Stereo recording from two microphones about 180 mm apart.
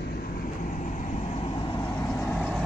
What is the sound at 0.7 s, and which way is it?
Vehicle, 45° left (ahead or behind).